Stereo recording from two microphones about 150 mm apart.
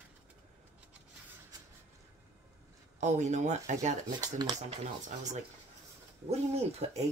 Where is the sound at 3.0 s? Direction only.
50° right (ahead or behind).